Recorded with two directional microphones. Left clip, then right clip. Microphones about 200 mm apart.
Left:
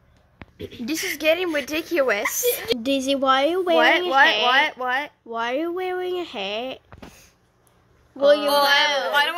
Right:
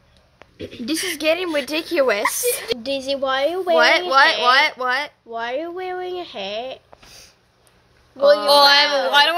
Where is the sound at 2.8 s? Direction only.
55° left (ahead or behind).